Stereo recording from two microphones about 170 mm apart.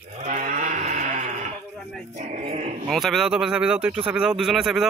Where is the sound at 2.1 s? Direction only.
45° right (ahead or behind).